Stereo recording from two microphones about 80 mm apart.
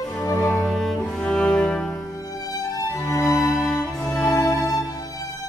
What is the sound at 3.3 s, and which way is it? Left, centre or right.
Music, centre.